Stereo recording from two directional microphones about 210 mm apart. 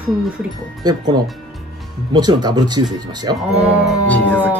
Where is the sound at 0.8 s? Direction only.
20° right (ahead or behind).